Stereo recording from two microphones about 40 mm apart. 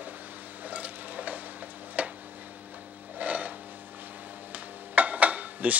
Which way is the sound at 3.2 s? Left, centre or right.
Right.